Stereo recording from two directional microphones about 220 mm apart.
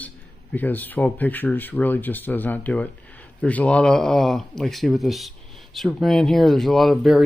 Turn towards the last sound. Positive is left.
turn(degrees=0)  # may be behind; listen again after turning